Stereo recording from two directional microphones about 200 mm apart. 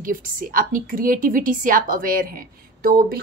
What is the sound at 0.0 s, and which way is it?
A woman's voice, 45° right (ahead or behind).